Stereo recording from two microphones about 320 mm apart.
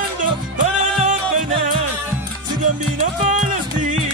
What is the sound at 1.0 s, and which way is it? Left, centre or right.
Music, right.